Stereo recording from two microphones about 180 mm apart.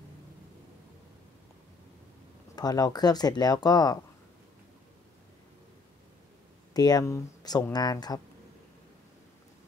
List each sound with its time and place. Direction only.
2.5 s speech: 20° left (ahead or behind)
6.7 s speech: 20° left (ahead or behind)